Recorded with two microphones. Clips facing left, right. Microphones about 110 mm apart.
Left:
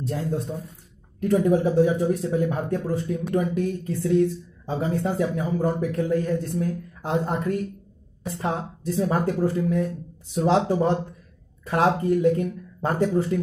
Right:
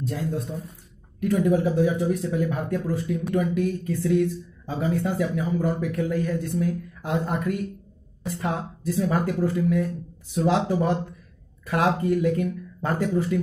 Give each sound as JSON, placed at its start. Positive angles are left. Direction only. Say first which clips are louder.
{"t": 0.0, "sound": "speech", "louder": "left 1 dB", "side_deg": 30}